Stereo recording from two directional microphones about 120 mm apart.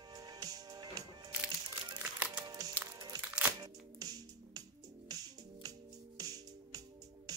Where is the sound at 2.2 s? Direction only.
10° right (ahead or behind).